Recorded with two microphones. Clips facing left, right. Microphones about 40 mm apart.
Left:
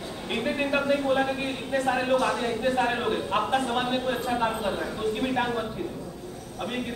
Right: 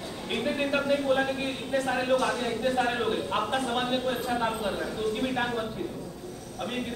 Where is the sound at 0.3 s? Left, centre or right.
Centre.